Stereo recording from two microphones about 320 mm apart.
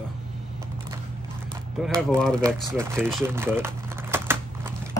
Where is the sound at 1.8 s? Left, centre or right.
Centre.